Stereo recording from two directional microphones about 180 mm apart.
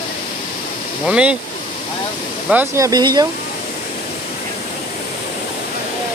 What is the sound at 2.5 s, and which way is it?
Speech, 10° right (ahead or behind).